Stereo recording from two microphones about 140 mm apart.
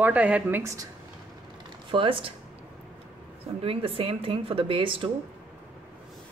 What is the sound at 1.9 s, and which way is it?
Speech, 40° right (ahead or behind).